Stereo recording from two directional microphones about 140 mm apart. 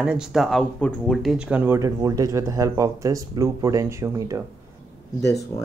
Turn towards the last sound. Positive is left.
turn(degrees=20)  # may be behind; listen again after turning